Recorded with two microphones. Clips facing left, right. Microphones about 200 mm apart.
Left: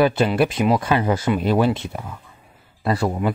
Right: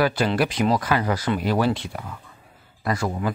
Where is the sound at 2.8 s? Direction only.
35° left (ahead or behind).